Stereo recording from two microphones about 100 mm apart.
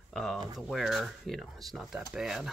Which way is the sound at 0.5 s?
Centre (ahead or behind).